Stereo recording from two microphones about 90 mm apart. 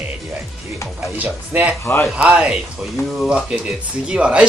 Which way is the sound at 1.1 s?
20° right (ahead or behind).